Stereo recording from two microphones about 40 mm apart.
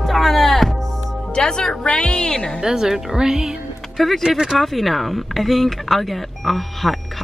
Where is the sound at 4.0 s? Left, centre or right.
Centre.